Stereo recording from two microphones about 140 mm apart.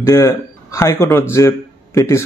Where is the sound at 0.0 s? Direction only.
20° left (ahead or behind).